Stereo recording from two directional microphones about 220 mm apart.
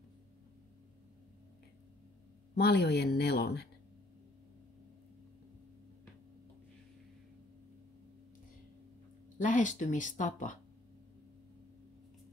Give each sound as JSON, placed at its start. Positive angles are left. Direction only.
{"t": 2.5, "sound": "speech", "side_deg": 45}
{"t": 9.4, "sound": "speech", "side_deg": 35}